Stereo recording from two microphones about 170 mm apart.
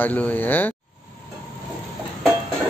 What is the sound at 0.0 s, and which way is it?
Speech, 10° left (ahead or behind).